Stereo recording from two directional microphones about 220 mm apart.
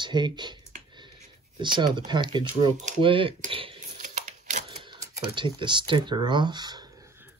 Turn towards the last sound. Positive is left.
turn(degrees=-10)  # may be behind; listen again after turning